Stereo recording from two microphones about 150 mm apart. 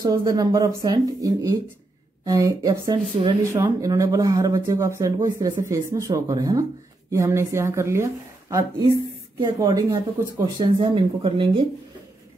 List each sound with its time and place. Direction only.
0.0 s speech: 25° right (ahead or behind)